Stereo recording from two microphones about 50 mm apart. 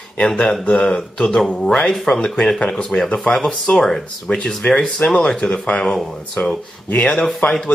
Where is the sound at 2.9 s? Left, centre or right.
Left.